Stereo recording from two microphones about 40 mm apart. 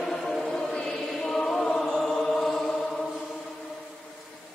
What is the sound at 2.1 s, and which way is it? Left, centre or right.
Chant, centre.